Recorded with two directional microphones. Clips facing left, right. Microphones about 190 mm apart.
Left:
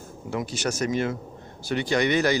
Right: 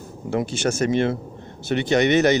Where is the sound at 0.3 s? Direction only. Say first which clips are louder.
Right 5 dB; 30° right (ahead or behind).